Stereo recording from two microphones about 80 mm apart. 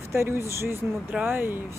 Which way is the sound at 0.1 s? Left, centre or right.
Right.